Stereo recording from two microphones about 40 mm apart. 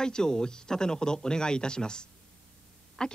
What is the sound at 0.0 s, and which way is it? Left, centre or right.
A woman's voice, centre.